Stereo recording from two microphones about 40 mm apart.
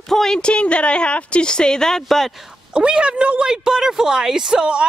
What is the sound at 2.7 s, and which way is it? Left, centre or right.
Speech, right.